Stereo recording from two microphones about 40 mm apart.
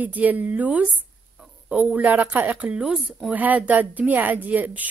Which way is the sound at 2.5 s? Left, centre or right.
Right.